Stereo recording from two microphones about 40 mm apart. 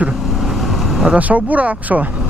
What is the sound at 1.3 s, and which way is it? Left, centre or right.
Speech, right.